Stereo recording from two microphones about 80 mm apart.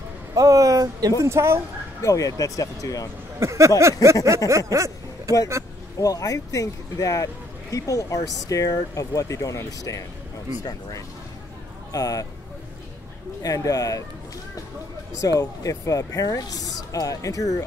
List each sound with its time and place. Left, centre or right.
0.3 s a sound: right
1.2 s a sound: right
2.0 s speech: left
3.3 s a sound: right
4.5 s speech: right
5.9 s speech: left
10.6 s speech: left
13.4 s speech: left
15.2 s speech: left